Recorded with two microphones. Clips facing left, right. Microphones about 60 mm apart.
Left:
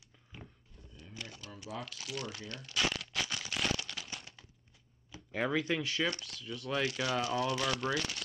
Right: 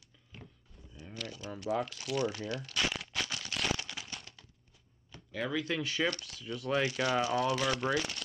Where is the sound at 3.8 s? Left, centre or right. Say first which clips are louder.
Even; centre.